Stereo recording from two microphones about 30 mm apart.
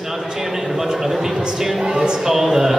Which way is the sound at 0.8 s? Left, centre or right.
Centre.